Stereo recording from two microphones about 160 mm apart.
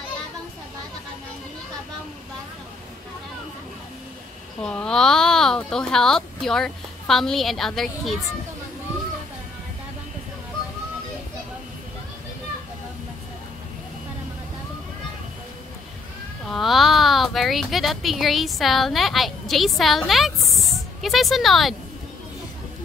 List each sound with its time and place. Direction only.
4.6 s speech: 5° left (ahead or behind)
16.4 s speech: centre (ahead or behind)